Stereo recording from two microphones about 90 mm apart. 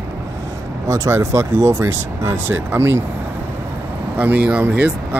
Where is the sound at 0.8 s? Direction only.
35° right (ahead or behind).